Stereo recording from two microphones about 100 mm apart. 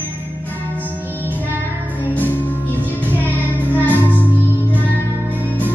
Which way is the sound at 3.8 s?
15° left (ahead or behind).